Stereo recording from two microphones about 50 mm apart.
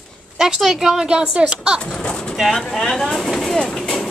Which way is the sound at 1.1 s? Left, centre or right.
Centre.